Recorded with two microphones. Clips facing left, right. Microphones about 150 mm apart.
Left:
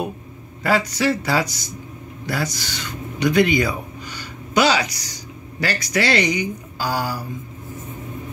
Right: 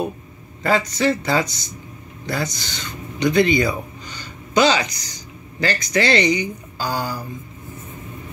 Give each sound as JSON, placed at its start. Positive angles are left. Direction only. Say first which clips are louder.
{"t": 0.6, "sound": "speech", "louder": "even", "side_deg": 5}